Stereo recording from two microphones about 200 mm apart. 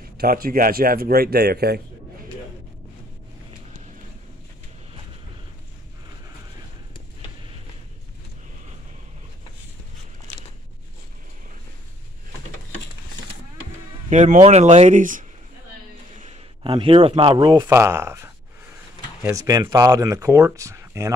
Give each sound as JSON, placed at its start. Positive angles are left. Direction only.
{"t": 0.2, "sound": "speech", "side_deg": -50}
{"t": 14.1, "sound": "speech", "side_deg": -35}
{"t": 16.2, "sound": "a sound", "side_deg": -35}
{"t": 16.7, "sound": "speech", "side_deg": -30}